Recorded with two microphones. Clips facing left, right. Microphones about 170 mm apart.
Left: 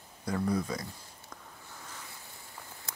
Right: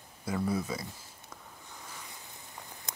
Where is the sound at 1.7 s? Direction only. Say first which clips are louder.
Even; 15° right (ahead or behind).